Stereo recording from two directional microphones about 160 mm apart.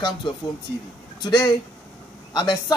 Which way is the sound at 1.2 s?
25° left (ahead or behind).